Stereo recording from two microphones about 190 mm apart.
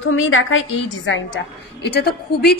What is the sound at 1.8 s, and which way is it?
Speech, 60° left (ahead or behind).